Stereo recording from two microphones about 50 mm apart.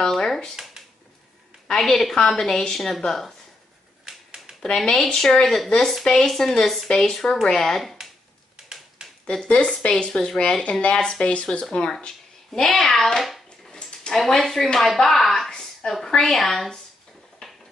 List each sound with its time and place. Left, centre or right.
0.0 s a woman's voice: centre
1.7 s a woman's voice: centre
4.0 s typewriter: centre
4.6 s a woman's voice: centre
9.2 s speech: centre
9.5 s a woman's voice: left; by 13.4 s centre
13.7 s a sound: centre
14.1 s a woman's voice: centre
17.4 s a sound: centre